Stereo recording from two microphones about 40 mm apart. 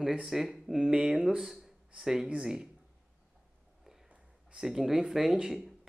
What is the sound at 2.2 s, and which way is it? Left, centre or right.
Speech, right.